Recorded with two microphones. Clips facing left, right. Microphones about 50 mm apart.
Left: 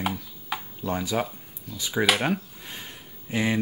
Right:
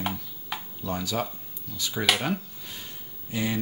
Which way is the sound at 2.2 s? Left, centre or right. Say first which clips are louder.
Left 3 dB; left.